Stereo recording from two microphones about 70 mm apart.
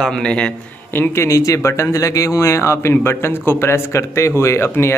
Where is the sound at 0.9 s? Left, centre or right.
Left.